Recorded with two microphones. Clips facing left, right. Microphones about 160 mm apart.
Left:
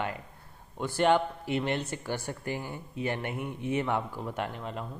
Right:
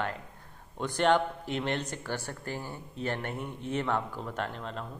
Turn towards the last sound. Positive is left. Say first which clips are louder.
# left 1 dB
turn(degrees=10)  # may be behind; listen again after turning